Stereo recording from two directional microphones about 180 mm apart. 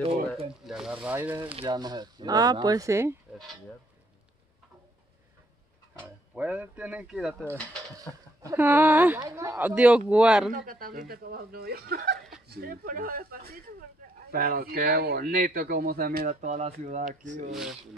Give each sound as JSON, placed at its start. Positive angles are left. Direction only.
{"t": 0.7, "sound": "speech", "side_deg": -5}
{"t": 1.6, "sound": "speech", "side_deg": -25}
{"t": 6.3, "sound": "speech", "side_deg": -10}
{"t": 8.0, "sound": "speech", "side_deg": -20}
{"t": 10.5, "sound": "speech", "side_deg": -50}
{"t": 17.5, "sound": "speech", "side_deg": 0}